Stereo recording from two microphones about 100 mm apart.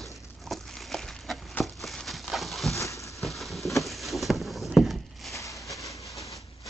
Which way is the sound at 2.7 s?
30° left (ahead or behind).